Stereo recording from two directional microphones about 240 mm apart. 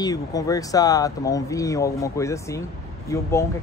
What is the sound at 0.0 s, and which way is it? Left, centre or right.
Speech, centre.